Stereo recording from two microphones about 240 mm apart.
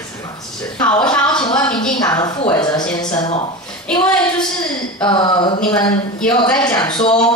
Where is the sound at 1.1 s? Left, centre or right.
Centre.